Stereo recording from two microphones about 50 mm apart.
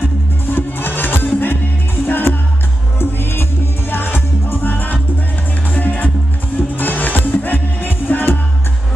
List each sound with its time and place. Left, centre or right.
0.6 s music: left